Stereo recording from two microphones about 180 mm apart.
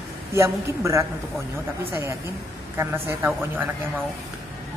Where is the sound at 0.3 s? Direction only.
15° right (ahead or behind).